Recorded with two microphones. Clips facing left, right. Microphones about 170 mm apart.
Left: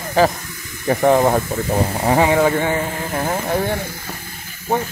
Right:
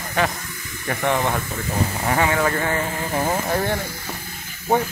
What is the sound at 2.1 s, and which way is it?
Speech, 25° left (ahead or behind).